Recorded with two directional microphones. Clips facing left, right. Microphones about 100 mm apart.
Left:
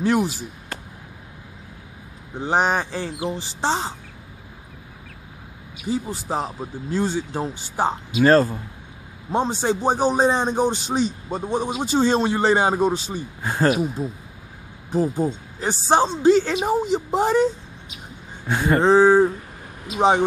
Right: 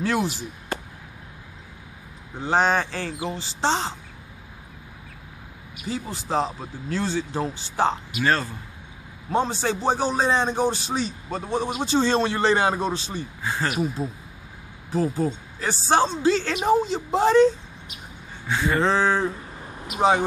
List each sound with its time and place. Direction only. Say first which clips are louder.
0.0 s a man's voice: left 4 dB; 15° left (ahead or behind)
2.4 s a man's voice: even; 15° left (ahead or behind)
5.9 s a man's voice: left 3 dB; 15° left (ahead or behind)
8.2 s speech: left 9 dB; 40° left (ahead or behind)
9.3 s a man's voice: left 2 dB; 20° left (ahead or behind)
13.4 s speech: left 5 dB; 45° left (ahead or behind)
14.9 s a man's voice: left 2 dB; 15° left (ahead or behind)
18.5 s speech: left 3 dB; 50° left (ahead or behind)
18.9 s a man's voice: left 12 dB; 15° left (ahead or behind)